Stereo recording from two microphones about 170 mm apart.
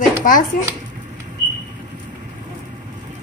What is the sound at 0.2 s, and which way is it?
Speech, 50° left (ahead or behind).